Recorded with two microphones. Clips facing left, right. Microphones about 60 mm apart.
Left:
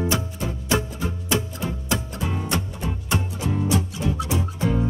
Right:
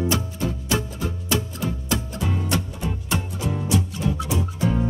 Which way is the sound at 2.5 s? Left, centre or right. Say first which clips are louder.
Right 1 dB; left.